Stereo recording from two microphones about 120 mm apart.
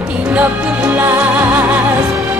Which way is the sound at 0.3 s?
15° right (ahead or behind).